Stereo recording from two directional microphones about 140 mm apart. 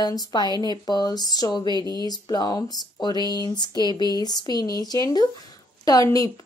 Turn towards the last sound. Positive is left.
turn(degrees=25)  # may be behind; listen again after turning